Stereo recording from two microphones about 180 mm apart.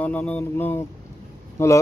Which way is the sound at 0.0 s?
10° left (ahead or behind).